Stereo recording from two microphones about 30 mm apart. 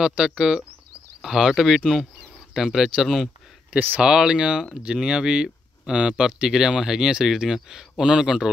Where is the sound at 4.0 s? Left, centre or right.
Right.